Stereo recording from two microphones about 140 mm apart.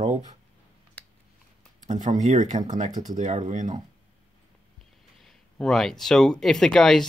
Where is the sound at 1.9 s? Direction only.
60° right (ahead or behind).